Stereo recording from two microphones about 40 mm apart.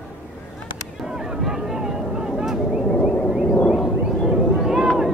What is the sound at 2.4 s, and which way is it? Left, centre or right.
Vehicle, centre.